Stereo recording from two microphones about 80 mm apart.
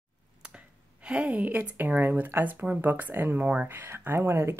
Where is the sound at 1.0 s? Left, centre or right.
Centre.